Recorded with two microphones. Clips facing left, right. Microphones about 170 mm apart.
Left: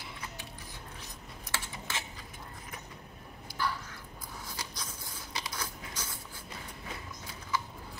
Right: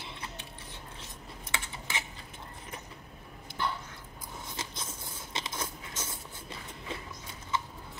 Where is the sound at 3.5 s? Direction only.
25° right (ahead or behind).